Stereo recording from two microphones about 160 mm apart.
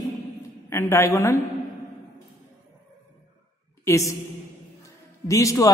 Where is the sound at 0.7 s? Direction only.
15° left (ahead or behind).